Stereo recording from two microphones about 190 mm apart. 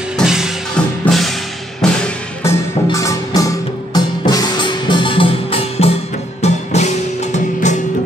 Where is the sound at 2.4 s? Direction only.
15° left (ahead or behind).